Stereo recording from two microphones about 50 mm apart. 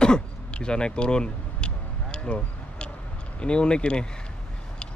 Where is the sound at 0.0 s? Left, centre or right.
Centre.